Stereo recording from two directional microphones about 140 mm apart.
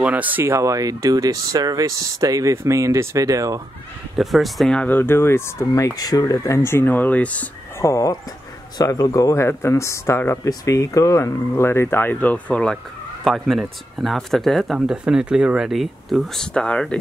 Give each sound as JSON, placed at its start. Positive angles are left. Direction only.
{"t": 0.0, "sound": "speech", "side_deg": -10}
{"t": 4.2, "sound": "speech", "side_deg": 0}
{"t": 7.8, "sound": "speech", "side_deg": 25}